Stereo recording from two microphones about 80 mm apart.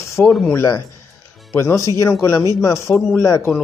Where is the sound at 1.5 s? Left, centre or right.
Left.